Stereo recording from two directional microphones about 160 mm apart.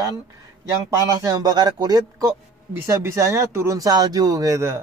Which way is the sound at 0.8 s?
20° right (ahead or behind).